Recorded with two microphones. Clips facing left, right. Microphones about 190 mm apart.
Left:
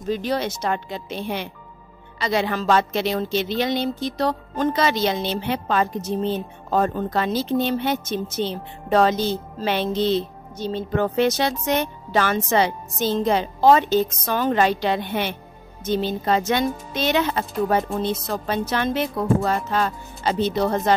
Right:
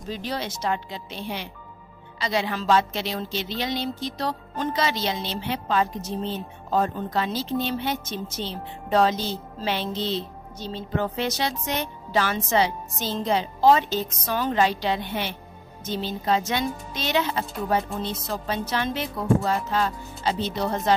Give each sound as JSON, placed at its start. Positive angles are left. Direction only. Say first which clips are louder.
{"t": 0.1, "sound": "a woman's voice", "louder": "left 7 dB", "side_deg": 55}